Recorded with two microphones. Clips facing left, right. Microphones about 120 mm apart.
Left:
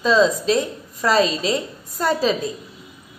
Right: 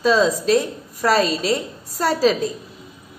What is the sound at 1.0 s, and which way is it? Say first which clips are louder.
Speech: even; 45° right (ahead or behind).